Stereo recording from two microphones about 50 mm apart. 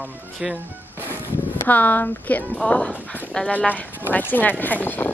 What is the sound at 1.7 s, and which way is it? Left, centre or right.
Speech, left.